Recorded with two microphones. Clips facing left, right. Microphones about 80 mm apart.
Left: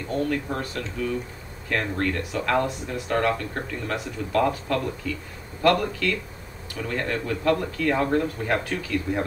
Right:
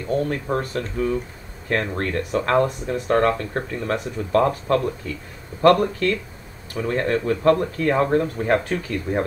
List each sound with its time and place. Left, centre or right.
0.1 s speech: right